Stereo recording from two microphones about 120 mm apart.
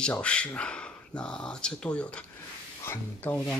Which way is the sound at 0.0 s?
10° left (ahead or behind).